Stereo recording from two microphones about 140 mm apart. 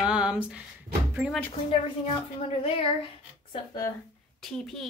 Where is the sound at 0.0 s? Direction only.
5° right (ahead or behind).